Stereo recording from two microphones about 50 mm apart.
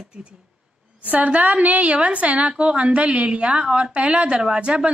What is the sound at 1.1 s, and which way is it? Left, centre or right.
A woman's voice, right.